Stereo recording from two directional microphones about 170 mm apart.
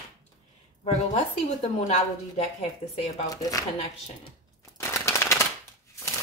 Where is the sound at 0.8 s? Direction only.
40° left (ahead or behind).